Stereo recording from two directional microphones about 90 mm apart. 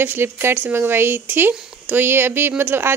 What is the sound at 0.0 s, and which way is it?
A woman's voice, 25° right (ahead or behind).